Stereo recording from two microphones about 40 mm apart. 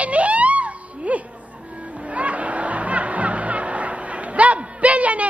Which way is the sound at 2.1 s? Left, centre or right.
Right.